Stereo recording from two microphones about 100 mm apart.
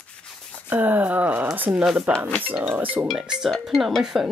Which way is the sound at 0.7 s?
20° right (ahead or behind).